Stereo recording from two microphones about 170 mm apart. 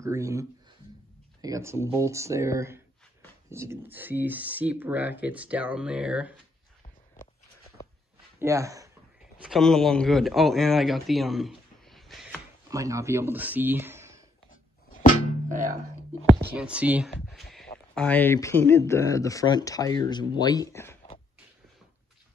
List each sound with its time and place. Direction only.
0.0 s speech: 15° right (ahead or behind)
8.4 s speech: 15° right (ahead or behind)
9.4 s speech: centre (ahead or behind)
12.6 s speech: 20° right (ahead or behind)
16.5 s speech: 5° right (ahead or behind); by 21.0 s 15° left (ahead or behind)